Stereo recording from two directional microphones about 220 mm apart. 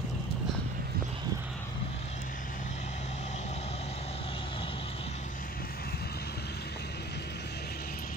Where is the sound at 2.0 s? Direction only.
35° left (ahead or behind).